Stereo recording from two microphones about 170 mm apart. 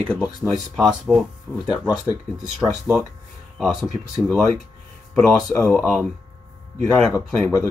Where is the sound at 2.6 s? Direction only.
Centre (ahead or behind).